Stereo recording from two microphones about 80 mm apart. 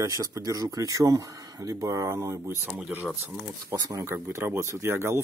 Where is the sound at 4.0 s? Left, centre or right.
Right.